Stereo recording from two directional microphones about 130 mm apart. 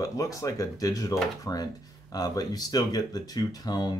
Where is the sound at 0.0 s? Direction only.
25° left (ahead or behind).